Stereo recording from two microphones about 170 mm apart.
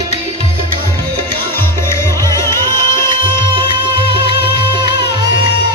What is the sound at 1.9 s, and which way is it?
Music, 15° left (ahead or behind).